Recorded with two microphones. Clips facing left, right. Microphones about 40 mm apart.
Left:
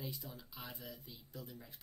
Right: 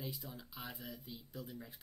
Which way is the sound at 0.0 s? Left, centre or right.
Centre.